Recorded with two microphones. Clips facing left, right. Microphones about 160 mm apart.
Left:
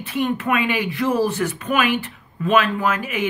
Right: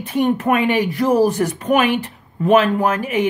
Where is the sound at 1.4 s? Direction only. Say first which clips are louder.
Right 5 dB; 40° right (ahead or behind).